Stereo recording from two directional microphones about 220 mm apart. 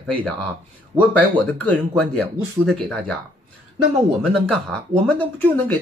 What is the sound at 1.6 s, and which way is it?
Speech, 5° left (ahead or behind).